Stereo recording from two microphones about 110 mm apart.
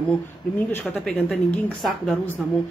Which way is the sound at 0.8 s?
Centre (ahead or behind).